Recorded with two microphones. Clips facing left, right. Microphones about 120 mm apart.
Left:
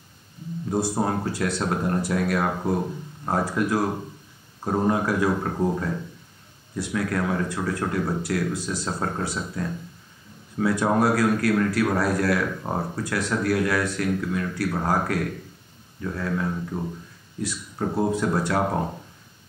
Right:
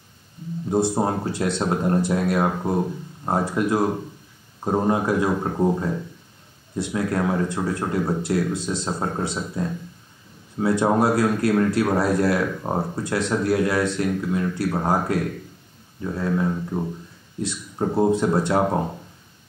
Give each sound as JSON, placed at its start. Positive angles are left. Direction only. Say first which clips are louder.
{"t": 0.7, "sound": "speech", "louder": "right 3 dB", "side_deg": -25}